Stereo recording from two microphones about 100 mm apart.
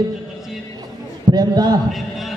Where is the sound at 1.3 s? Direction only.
40° right (ahead or behind).